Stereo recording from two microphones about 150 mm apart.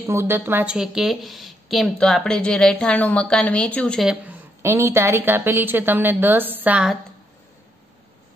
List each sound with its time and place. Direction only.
0.0 s a woman's voice: 15° right (ahead or behind)
4.6 s a woman's voice: 20° right (ahead or behind)